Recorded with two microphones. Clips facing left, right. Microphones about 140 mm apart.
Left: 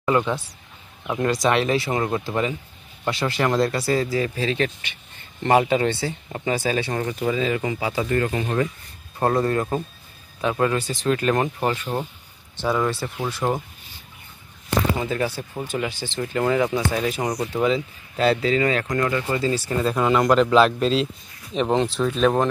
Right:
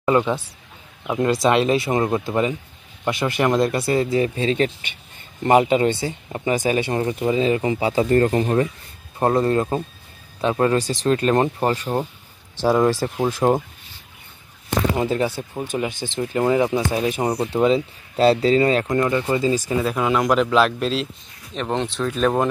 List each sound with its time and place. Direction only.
1.0 s speech: 15° right (ahead or behind)
1.3 s speech: 25° right (ahead or behind)
10.6 s speech: 35° right (ahead or behind)
15.1 s speech: 20° right (ahead or behind)
19.8 s a man's voice: 5° right (ahead or behind)